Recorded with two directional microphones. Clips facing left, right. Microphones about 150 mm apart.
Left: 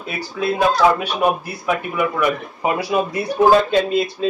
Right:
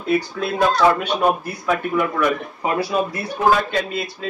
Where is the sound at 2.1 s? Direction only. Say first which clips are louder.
Even; 15° left (ahead or behind).